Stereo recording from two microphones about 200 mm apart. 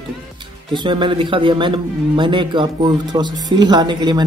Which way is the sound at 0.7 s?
25° right (ahead or behind).